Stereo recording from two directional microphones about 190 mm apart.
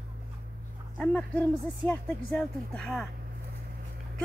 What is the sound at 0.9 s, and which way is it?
Speech, 5° left (ahead or behind).